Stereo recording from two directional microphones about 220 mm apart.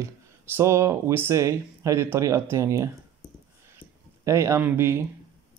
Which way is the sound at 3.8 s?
40° left (ahead or behind).